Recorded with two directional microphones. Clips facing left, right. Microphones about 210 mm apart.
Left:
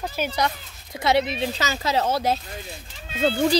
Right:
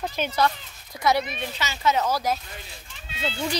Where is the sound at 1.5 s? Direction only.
40° left (ahead or behind).